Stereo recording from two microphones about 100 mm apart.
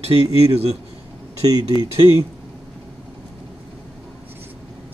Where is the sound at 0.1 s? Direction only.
65° right (ahead or behind); by 0.7 s 85° right.